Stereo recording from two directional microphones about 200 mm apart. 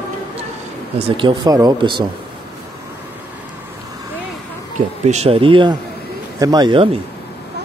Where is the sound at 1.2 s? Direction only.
25° right (ahead or behind).